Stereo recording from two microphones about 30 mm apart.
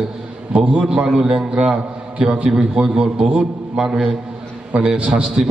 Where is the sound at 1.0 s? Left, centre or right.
Right.